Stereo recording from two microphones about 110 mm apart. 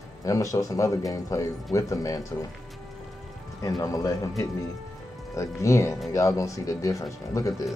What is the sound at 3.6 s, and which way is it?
Speech, 30° left (ahead or behind).